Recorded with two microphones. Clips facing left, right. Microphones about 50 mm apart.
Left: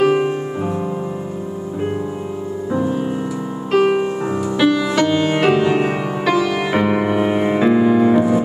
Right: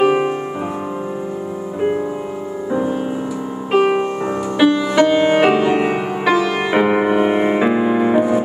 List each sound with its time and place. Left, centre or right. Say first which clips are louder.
0.0 s music: even; centre
2.7 s music: even; centre